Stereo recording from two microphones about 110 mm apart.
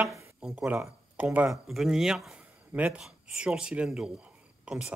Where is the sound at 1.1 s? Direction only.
15° right (ahead or behind).